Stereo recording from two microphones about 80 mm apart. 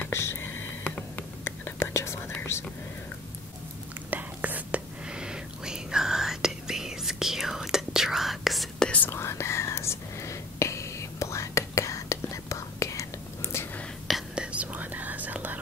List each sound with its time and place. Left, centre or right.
0.1 s a sound: left
0.8 s whispering: left
4.1 s whispering: right; by 8.8 s centre
8.8 s whispering: centre
9.1 s whispering: left
14.3 s whispering: centre